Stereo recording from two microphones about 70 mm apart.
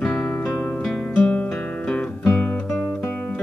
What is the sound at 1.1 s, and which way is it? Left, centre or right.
Guitar, left.